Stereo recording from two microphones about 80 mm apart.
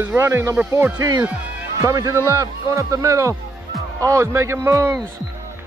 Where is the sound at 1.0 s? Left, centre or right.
Right.